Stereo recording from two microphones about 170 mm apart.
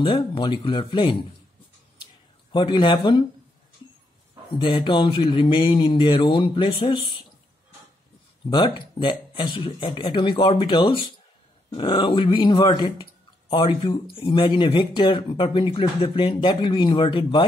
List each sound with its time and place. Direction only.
0.0 s speech: 30° left (ahead or behind)
2.5 s speech: 30° left (ahead or behind)
4.6 s speech: 30° left (ahead or behind)
8.5 s speech: 30° left (ahead or behind)